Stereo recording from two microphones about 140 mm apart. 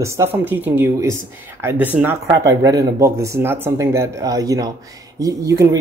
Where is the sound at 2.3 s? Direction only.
25° right (ahead or behind).